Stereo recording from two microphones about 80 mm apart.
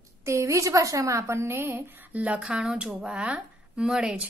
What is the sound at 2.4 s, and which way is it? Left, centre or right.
Speech, centre.